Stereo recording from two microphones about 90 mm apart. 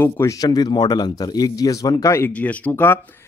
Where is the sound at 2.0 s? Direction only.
30° left (ahead or behind).